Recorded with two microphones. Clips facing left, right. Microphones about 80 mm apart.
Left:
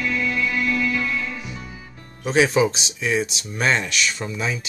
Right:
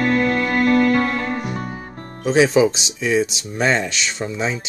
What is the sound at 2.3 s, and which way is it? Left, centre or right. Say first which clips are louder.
Speech: right 3 dB; right.